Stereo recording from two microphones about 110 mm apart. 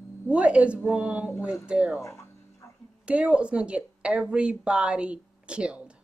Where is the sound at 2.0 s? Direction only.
30° left (ahead or behind).